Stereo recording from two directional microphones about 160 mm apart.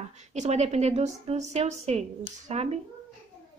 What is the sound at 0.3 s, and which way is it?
A woman's voice, 45° right (ahead or behind).